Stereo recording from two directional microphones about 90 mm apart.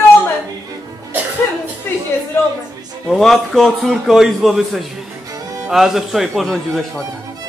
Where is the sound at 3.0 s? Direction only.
5° left (ahead or behind).